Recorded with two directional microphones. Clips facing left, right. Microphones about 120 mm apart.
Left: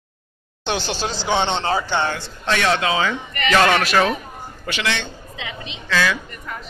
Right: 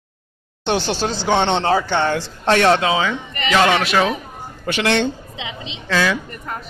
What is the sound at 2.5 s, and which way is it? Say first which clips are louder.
Speech: right 5 dB; 40° right (ahead or behind).